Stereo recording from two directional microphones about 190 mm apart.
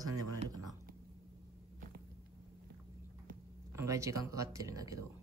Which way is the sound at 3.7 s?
15° right (ahead or behind).